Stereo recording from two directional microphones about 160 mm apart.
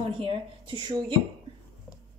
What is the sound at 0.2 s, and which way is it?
Speech, 30° right (ahead or behind).